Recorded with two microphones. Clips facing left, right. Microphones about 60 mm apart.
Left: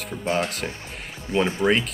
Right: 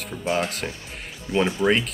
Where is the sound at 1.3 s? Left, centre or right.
Left.